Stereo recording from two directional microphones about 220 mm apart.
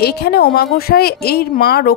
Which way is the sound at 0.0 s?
45° left (ahead or behind).